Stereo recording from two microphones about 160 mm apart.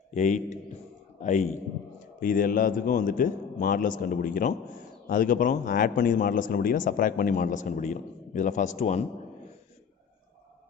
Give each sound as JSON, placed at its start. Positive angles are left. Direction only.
{"t": 0.1, "sound": "a man's voice", "side_deg": 50}